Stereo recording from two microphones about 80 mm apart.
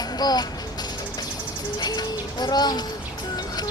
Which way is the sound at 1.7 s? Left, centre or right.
Left.